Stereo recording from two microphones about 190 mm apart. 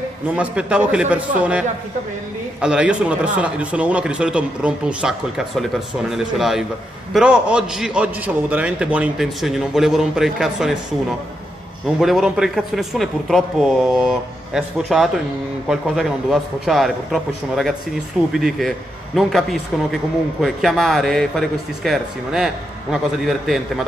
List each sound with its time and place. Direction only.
0.4 s a man's voice: 5° right (ahead or behind)
20.4 s a man's voice: centre (ahead or behind)